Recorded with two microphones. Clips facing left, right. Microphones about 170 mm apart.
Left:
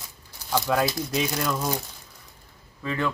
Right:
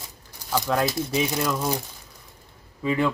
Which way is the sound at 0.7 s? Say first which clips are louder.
Right 1 dB; 5° left (ahead or behind).